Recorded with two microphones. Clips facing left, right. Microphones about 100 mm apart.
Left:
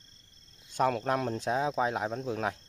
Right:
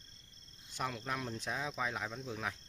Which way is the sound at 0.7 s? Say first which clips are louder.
Left 12 dB; 55° left (ahead or behind).